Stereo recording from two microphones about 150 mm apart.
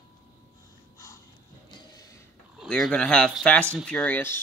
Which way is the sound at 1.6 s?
25° left (ahead or behind).